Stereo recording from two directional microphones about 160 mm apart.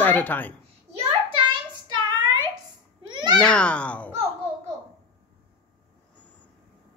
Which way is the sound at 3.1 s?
30° right (ahead or behind).